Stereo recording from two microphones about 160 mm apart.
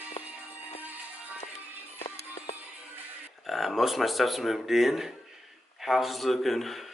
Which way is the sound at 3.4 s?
Centre (ahead or behind).